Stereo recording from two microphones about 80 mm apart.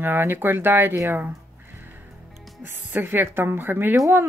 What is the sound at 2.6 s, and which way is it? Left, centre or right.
Speech, right.